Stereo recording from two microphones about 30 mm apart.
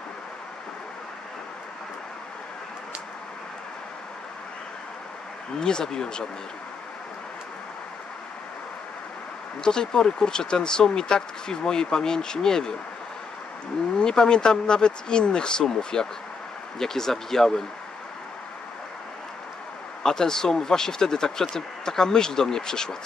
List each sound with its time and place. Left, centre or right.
5.6 s speech: left
9.6 s speech: left
13.9 s speech: left
20.0 s speech: centre